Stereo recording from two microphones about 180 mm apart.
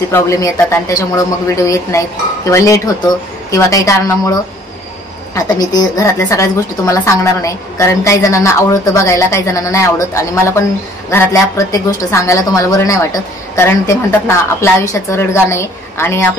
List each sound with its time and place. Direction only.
0.1 s a woman's voice: 15° left (ahead or behind)